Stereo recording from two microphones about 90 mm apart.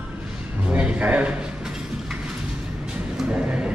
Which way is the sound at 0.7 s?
15° right (ahead or behind).